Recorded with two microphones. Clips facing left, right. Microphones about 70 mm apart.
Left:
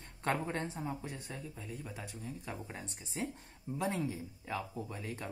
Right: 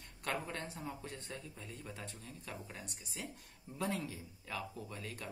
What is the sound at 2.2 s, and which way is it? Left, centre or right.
Speech, left.